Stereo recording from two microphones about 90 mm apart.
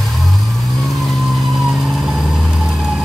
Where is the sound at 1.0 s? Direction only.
Centre (ahead or behind).